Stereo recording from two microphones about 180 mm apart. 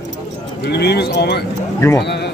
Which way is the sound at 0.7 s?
65° left (ahead or behind).